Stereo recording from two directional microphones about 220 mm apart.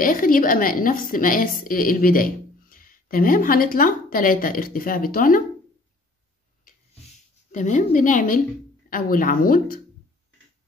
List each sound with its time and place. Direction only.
0.0 s a woman's voice: 40° left (ahead or behind)
7.5 s a woman's voice: 35° left (ahead or behind)